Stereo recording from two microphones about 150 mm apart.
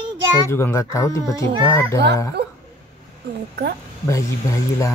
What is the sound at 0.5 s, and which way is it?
Speech, 15° left (ahead or behind).